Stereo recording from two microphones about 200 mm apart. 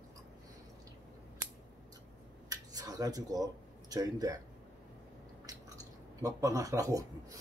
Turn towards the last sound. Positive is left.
turn(degrees=-15)  # may be behind; listen again after turning